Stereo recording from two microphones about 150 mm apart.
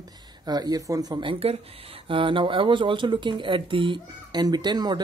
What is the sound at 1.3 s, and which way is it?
Speech, 40° right (ahead or behind).